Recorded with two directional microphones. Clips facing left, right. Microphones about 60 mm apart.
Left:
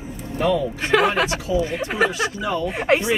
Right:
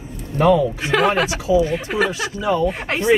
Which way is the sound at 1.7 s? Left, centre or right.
Left.